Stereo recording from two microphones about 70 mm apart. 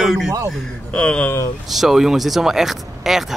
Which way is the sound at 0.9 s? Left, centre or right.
Centre.